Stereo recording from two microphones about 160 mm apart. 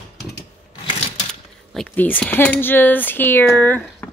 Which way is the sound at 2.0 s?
10° left (ahead or behind).